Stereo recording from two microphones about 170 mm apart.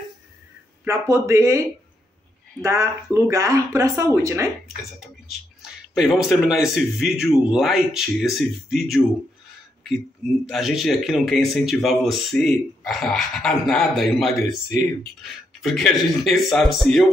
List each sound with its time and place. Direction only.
0.8 s speech: 15° right (ahead or behind)
2.6 s speech: 15° right (ahead or behind)
5.6 s speech: centre (ahead or behind)
10.5 s speech: centre (ahead or behind)